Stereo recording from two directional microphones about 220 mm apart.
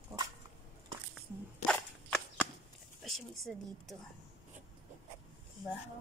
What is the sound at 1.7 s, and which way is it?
Walk, 5° left (ahead or behind).